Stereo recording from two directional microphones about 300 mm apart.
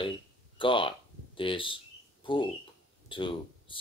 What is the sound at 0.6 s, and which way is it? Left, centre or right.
Speech, centre.